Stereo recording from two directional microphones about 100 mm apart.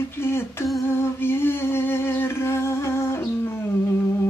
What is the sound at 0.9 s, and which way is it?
Humming, 25° left (ahead or behind).